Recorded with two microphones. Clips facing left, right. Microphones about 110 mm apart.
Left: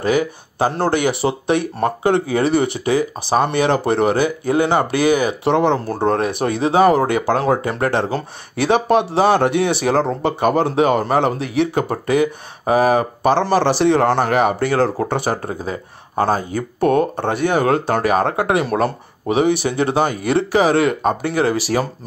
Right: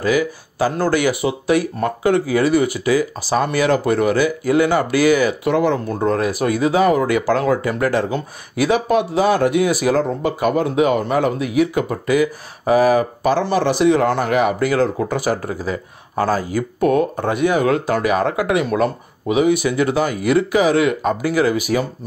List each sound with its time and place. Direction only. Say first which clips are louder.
0.0 s speech: even; 25° left (ahead or behind)
16.8 s speech: left 1 dB; 35° left (ahead or behind)